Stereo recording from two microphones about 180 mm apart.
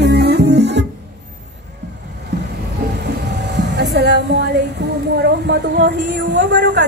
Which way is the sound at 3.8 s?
70° right (ahead or behind).